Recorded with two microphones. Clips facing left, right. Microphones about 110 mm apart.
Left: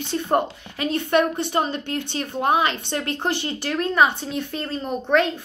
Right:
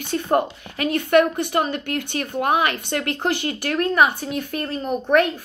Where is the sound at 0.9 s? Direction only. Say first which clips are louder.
Right 3 dB; 25° left (ahead or behind).